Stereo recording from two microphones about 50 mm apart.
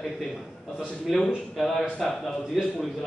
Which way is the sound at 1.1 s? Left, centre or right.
Centre.